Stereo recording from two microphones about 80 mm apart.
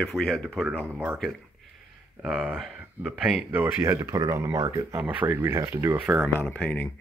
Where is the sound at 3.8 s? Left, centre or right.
Right.